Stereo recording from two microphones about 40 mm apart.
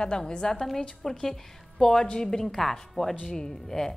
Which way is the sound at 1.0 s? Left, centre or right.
Centre.